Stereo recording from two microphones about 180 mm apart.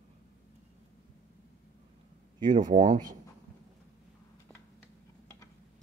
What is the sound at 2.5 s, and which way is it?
Speech, 45° right (ahead or behind).